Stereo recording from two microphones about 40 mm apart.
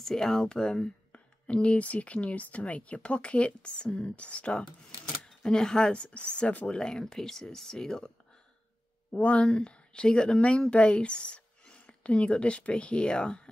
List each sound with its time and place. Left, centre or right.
0.0 s speech: centre; by 4.6 s left
5.4 s speech: centre
6.0 s speech: left; by 8.1 s centre
9.1 s a woman's voice: left